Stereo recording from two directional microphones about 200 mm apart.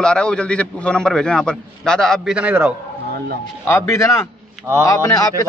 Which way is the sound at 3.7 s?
15° left (ahead or behind).